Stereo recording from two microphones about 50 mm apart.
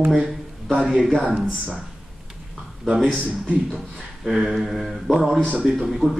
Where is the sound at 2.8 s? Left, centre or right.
Centre.